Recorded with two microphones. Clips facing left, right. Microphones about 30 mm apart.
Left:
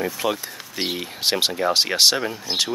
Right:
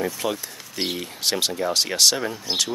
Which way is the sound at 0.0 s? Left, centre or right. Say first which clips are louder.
Left 2 dB; centre.